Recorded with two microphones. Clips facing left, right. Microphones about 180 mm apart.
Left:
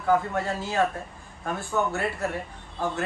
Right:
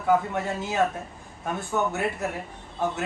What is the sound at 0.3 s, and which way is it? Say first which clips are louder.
Speech: even; 20° right (ahead or behind).